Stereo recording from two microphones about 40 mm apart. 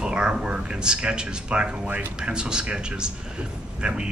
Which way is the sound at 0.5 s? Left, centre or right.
Right.